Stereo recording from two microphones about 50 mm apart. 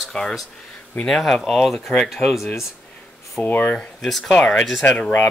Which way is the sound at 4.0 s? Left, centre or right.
Centre.